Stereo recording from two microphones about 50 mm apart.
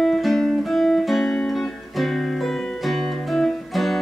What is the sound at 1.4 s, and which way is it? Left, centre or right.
Music, centre.